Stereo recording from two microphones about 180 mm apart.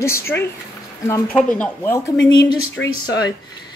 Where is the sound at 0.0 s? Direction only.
15° left (ahead or behind).